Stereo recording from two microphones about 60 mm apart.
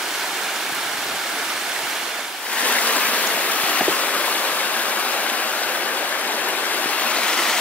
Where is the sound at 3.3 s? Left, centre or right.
Left.